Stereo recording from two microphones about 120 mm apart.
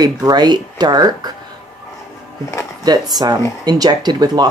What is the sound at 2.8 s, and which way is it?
Speech, 35° right (ahead or behind).